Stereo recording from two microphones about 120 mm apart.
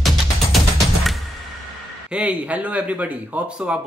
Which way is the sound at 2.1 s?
10° right (ahead or behind).